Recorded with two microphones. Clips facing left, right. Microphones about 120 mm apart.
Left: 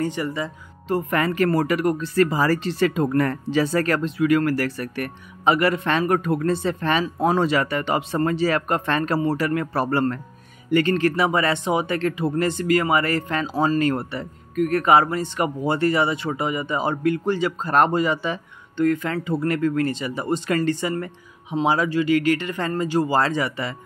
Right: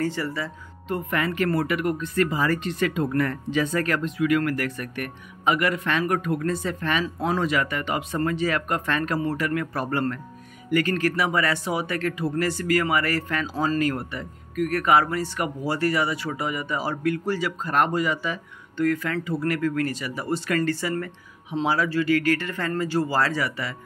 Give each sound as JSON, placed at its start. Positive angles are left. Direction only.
{"t": 0.0, "sound": "speech", "side_deg": 20}
{"t": 0.8, "sound": "speech", "side_deg": 40}